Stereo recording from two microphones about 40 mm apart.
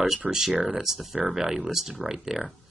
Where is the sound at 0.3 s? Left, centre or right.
Centre.